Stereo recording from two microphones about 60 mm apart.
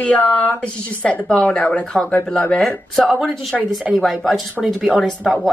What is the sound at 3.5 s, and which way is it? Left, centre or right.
Speech, centre.